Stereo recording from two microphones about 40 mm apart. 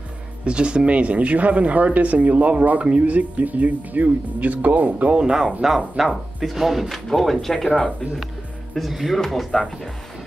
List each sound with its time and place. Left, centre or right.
0.5 s speech: right
5.2 s speech: centre
8.7 s speech: centre